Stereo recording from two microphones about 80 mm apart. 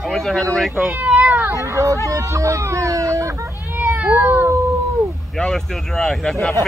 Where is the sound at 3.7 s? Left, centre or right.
Right.